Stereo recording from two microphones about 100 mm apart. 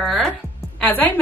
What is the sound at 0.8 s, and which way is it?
Speech, 15° left (ahead or behind).